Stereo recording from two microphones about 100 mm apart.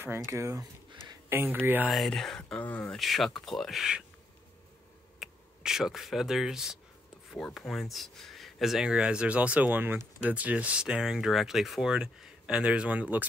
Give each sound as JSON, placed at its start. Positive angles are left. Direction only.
{"t": 0.3, "sound": "speech", "side_deg": -30}
{"t": 1.9, "sound": "speech", "side_deg": 5}
{"t": 5.2, "sound": "speech", "side_deg": -5}